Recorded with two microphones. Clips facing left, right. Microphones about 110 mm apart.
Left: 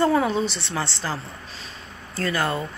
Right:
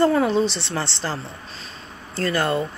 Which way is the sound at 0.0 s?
Centre (ahead or behind).